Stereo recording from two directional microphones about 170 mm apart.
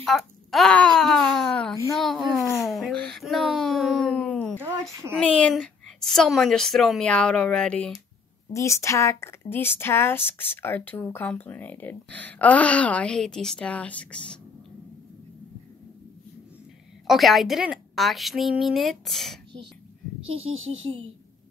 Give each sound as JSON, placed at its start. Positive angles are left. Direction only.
{"t": 0.0, "sound": "a woman's voice", "side_deg": 0}
{"t": 2.7, "sound": "a sound", "side_deg": 5}
{"t": 5.1, "sound": "a woman's voice", "side_deg": 5}
{"t": 8.5, "sound": "speech", "side_deg": 15}
{"t": 17.1, "sound": "a woman's voice", "side_deg": 0}
{"t": 20.2, "sound": "speech", "side_deg": -35}